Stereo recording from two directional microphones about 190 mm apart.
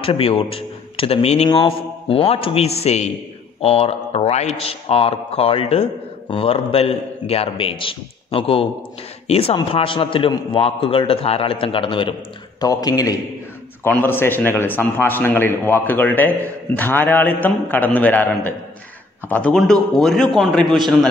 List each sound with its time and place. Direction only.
0.0 s a man's voice: 30° left (ahead or behind); by 20.8 s centre (ahead or behind)